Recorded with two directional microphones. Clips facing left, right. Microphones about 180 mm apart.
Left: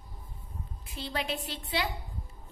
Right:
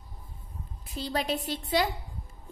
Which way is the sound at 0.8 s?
40° right (ahead or behind).